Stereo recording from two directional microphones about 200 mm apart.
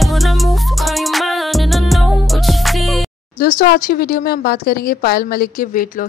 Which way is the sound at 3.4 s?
45° left (ahead or behind).